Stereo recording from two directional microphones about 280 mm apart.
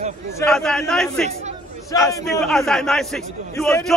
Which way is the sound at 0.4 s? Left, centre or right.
Centre.